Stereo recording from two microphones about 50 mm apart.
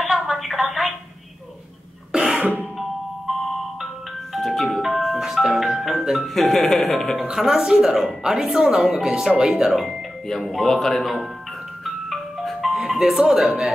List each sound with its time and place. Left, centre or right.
0.0 s telephone: centre
2.1 s cough: centre
2.8 s marimba: centre
6.2 s speech: centre
7.2 s speech: centre
10.2 s speech: centre
11.8 s music: centre